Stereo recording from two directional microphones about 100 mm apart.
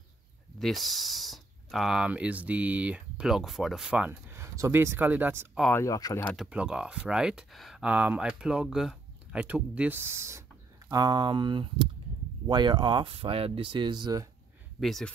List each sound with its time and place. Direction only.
0.6 s speech: centre (ahead or behind)
4.3 s speech: 30° right (ahead or behind)
5.7 s speech: 25° left (ahead or behind)
5.9 s speech: 40° left (ahead or behind)
6.3 s speech: 5° right (ahead or behind)
7.8 s speech: 15° right (ahead or behind)
10.9 s speech: 40° right (ahead or behind)
14.8 s speech: 5° left (ahead or behind)